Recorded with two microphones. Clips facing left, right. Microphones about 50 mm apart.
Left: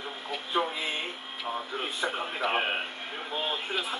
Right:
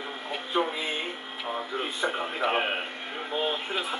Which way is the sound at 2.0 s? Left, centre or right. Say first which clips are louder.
Right 2 dB; centre.